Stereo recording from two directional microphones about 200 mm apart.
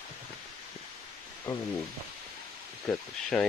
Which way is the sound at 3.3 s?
Centre (ahead or behind).